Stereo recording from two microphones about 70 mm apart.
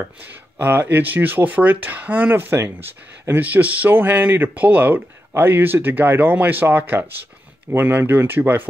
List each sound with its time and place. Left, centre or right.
0.0 s speech: right